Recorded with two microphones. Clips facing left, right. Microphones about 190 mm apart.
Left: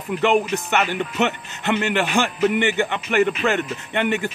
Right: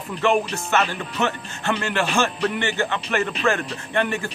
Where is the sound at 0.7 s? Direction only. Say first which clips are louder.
Left 1 dB; 20° left (ahead or behind).